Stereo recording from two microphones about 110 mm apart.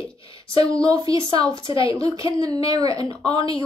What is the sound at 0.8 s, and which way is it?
Speech, 35° right (ahead or behind).